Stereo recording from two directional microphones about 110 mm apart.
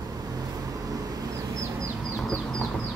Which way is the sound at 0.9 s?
30° right (ahead or behind).